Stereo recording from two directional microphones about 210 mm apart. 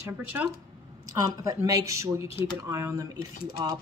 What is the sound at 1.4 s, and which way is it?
Speech, 15° right (ahead or behind).